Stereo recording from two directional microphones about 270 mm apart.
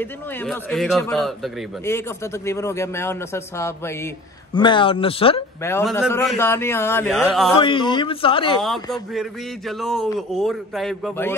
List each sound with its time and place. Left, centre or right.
0.0 s a man's voice: centre
5.6 s a man's voice: centre
7.5 s a man's voice: centre
8.9 s a man's voice: centre